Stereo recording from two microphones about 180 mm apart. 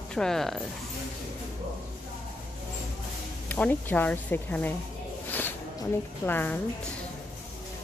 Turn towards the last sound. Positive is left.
turn(degrees=10)  # may be behind; listen again after turning